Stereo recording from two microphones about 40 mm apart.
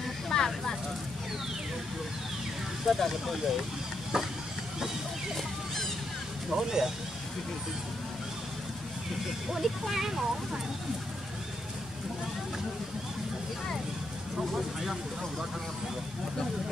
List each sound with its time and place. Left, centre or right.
0.3 s speech: centre
2.9 s speech: centre
4.1 s speech: centre
6.5 s speech: centre
9.5 s speech: centre